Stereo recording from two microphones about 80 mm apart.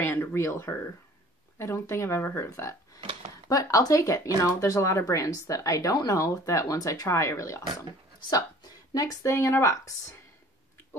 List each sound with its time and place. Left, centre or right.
0.0 s speech: left
3.4 s speech: left
8.9 s speech: left